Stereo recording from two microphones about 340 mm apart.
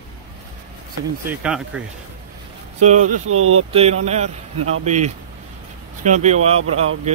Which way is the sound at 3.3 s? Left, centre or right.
Right.